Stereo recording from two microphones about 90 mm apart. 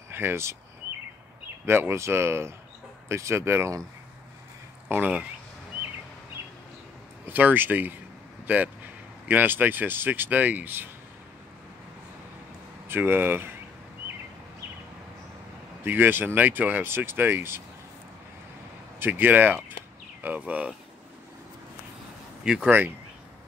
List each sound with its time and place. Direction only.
0.1 s speech: 25° right (ahead or behind)
1.7 s speech: 25° right (ahead or behind)
4.8 s speech: 15° right (ahead or behind)
7.2 s speech: 20° right (ahead or behind)
9.3 s speech: 20° right (ahead or behind)
12.8 s speech: 25° right (ahead or behind)
15.8 s speech: 20° right (ahead or behind)
18.9 s speech: 20° right (ahead or behind)
22.4 s speech: 10° right (ahead or behind)